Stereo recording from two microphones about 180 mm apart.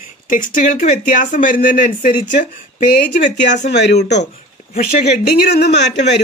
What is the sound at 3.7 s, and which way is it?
Speech, 70° left (ahead or behind).